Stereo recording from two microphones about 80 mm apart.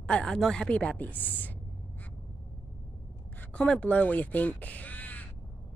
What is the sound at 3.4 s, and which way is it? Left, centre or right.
Speech, centre.